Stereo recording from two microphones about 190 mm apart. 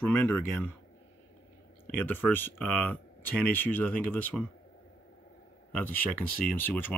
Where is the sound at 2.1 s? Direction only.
10° left (ahead or behind).